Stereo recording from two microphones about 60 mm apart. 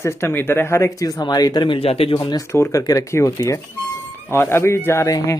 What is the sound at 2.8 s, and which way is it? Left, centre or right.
Speech, left.